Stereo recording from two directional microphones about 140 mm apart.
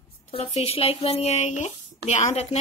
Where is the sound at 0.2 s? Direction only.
45° left (ahead or behind).